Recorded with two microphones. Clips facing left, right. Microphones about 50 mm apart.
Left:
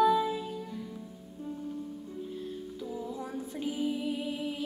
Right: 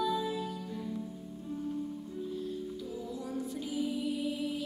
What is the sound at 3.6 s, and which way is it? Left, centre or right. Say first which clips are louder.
Music: left 4 dB; left.